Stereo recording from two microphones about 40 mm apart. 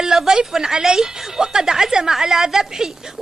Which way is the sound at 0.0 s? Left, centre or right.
Centre.